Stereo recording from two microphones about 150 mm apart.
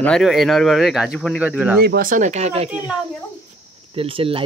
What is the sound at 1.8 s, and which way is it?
Speech, 80° right.